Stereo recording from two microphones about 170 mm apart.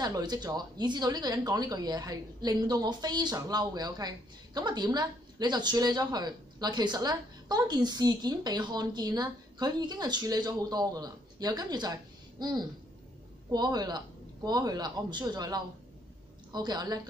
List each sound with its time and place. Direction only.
0.0 s a woman's voice: 25° right (ahead or behind)